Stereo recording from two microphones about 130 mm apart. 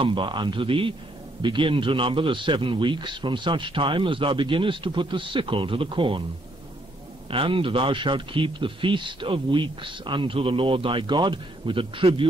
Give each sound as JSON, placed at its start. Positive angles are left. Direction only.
{"t": 0.0, "sound": "speech", "side_deg": -40}
{"t": 7.2, "sound": "speech", "side_deg": -40}